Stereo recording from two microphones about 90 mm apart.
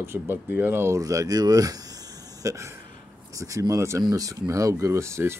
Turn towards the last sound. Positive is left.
turn(degrees=-30)  # may be behind; listen again after turning